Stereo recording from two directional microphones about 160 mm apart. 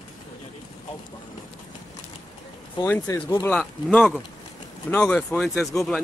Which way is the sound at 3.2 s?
20° left (ahead or behind).